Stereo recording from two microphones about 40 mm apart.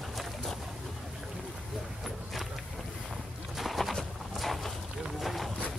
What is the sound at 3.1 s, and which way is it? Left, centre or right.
Walk, centre.